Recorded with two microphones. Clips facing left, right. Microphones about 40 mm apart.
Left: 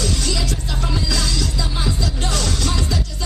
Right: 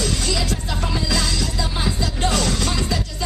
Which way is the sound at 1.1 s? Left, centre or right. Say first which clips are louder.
Even; right.